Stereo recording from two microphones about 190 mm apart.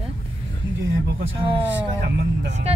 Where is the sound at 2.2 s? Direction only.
65° right (ahead or behind).